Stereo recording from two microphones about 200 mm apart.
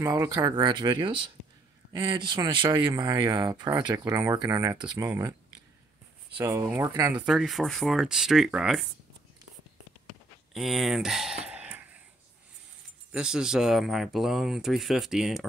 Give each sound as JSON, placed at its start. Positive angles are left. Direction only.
{"t": 0.0, "sound": "speech", "side_deg": -20}
{"t": 6.3, "sound": "speech", "side_deg": -15}
{"t": 10.5, "sound": "a sound", "side_deg": 0}
{"t": 13.1, "sound": "speech", "side_deg": -5}